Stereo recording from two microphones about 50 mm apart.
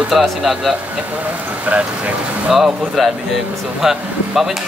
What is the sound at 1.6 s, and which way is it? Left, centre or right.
Speech, right.